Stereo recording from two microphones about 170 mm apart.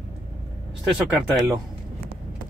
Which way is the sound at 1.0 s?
Centre (ahead or behind).